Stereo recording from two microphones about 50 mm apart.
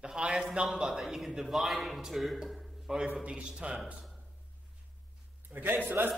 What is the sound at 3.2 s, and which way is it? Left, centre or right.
Speech, right.